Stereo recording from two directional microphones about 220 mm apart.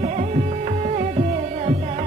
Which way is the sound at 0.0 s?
35° right (ahead or behind).